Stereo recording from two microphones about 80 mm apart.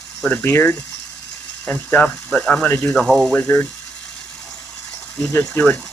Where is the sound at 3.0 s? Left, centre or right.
Centre.